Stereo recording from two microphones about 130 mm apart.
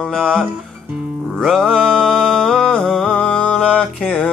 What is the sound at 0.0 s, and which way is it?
Music, 5° left (ahead or behind).